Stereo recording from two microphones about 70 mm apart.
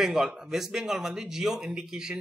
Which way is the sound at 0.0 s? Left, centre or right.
Centre.